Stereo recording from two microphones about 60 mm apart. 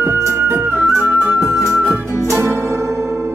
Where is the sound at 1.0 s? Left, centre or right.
Right.